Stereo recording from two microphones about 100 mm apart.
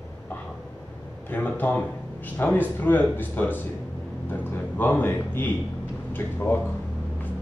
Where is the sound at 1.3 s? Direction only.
20° left (ahead or behind).